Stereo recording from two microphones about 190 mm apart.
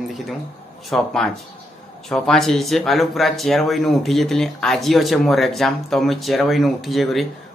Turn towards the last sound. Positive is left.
turn(degrees=0)  # may be behind; listen again after turning